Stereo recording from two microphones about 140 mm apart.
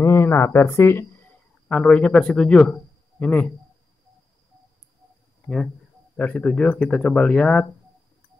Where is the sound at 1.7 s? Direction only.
5° left (ahead or behind).